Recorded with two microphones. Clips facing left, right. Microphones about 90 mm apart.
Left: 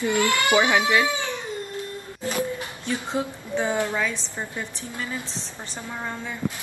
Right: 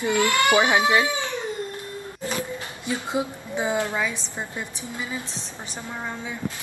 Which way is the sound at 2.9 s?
10° right (ahead or behind).